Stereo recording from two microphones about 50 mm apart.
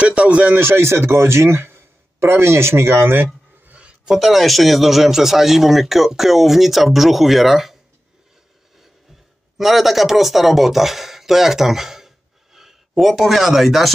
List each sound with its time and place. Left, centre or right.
0.0 s speech: right
0.5 s speech: right
3.6 s a sound: right
4.1 s speech: centre
9.6 s speech: centre